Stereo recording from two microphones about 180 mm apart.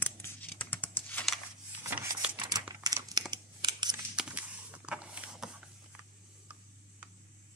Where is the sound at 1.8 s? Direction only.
15° right (ahead or behind).